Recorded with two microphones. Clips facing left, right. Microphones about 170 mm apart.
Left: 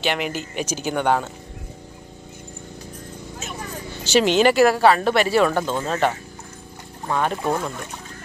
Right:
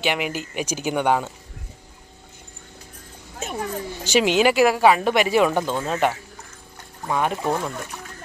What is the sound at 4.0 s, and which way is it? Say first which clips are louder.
Speech: left 2 dB; 10° right (ahead or behind).